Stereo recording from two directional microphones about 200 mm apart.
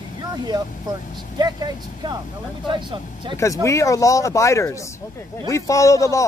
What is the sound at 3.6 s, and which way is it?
Speech, 15° left (ahead or behind).